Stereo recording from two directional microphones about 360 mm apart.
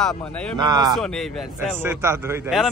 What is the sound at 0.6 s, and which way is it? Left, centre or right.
Speech, centre.